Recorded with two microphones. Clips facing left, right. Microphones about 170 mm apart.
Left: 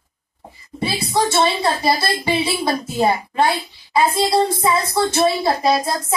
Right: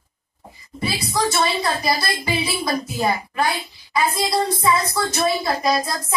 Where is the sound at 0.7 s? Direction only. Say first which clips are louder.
Left 3 dB; 30° left (ahead or behind).